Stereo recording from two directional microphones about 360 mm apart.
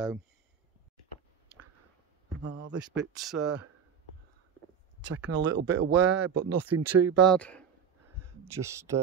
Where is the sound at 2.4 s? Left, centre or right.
Right.